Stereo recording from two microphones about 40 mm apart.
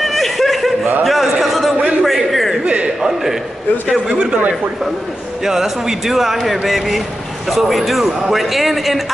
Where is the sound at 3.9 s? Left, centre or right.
Right.